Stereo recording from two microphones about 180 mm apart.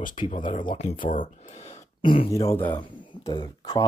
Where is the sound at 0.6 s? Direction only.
30° left (ahead or behind).